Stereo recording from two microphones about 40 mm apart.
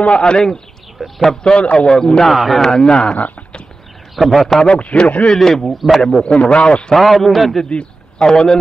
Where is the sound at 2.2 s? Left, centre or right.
Centre; by 3.2 s left.